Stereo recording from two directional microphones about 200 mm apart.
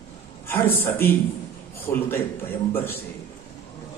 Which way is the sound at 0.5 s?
10° left (ahead or behind).